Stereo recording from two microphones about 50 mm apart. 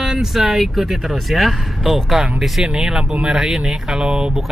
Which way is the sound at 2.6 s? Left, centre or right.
Centre.